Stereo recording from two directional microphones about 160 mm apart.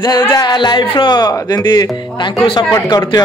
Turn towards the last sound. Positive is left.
turn(degrees=25)  # may be behind; listen again after turning